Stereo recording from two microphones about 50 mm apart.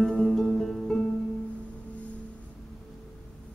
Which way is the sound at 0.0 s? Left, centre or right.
Centre.